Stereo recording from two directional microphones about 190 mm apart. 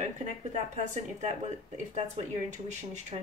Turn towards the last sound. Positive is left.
turn(degrees=-40)  # may be behind; listen again after turning